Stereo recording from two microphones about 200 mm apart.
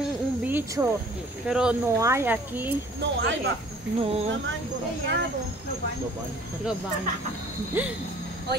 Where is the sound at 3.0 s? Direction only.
65° right (ahead or behind).